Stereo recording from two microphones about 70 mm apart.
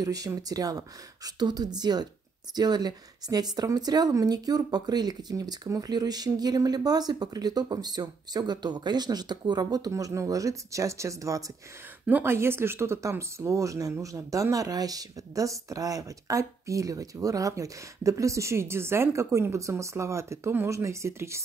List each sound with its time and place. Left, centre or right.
0.0 s speech: right
4.1 s speech: right
12.1 s speech: right